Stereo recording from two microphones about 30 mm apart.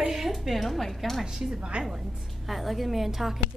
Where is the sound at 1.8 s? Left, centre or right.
Right.